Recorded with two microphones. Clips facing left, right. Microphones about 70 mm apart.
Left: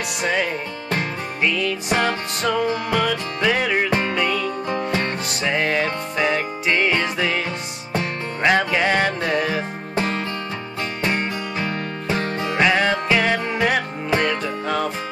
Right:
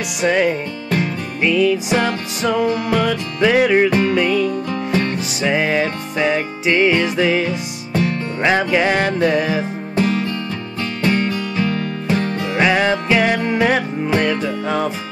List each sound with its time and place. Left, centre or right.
0.2 s music: centre
4.6 s music: left
5.4 s music: centre
7.9 s music: left
8.4 s music: centre
9.9 s music: left
11.1 s music: left
12.2 s music: left
12.5 s music: centre